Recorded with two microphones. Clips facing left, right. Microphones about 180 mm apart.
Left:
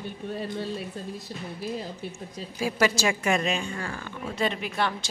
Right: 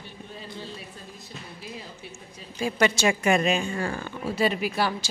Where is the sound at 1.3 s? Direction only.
50° left (ahead or behind).